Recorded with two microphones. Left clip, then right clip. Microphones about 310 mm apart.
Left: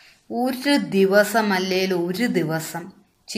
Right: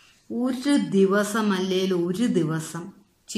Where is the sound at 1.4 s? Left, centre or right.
Centre.